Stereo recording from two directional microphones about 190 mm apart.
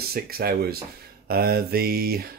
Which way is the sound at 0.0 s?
55° right (ahead or behind).